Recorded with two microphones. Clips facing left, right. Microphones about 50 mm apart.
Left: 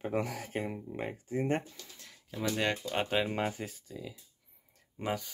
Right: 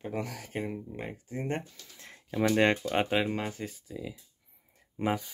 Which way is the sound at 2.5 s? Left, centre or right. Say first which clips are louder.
Right 6 dB; right.